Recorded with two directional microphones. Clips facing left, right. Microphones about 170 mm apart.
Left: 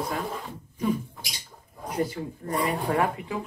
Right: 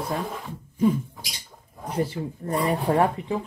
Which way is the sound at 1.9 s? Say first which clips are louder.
Right 2 dB; 30° right (ahead or behind).